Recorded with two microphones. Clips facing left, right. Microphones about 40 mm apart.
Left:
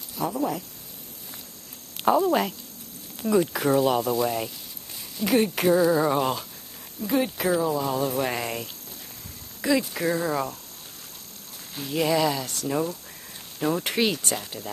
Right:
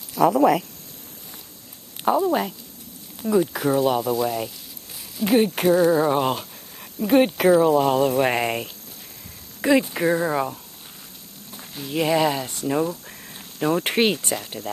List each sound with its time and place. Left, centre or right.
0.1 s speech: right
2.0 s speech: centre
5.2 s speech: centre
7.0 s speech: right
9.6 s speech: right
11.9 s speech: centre